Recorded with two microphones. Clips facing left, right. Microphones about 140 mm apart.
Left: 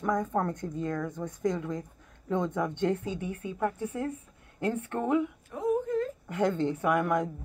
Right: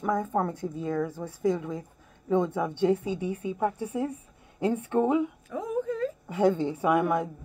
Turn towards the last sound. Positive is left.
turn(degrees=-10)  # may be behind; listen again after turning